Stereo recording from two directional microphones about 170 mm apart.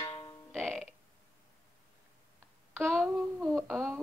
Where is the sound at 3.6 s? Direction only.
Centre (ahead or behind).